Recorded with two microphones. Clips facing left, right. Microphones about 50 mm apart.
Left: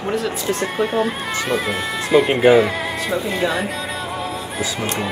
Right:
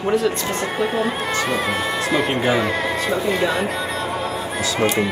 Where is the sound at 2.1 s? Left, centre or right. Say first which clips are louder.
Left 8 dB; centre.